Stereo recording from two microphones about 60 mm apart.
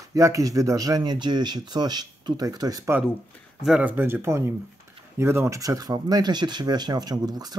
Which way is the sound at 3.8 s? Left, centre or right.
Right.